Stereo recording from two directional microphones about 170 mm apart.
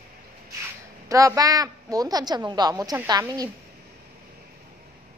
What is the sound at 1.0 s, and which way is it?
A woman's voice, 20° right (ahead or behind).